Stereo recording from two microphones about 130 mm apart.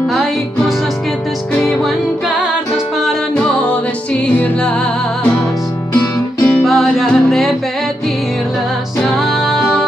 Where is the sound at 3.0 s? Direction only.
5° left (ahead or behind).